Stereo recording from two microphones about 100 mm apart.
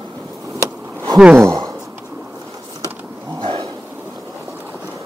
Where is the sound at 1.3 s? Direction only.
25° right (ahead or behind).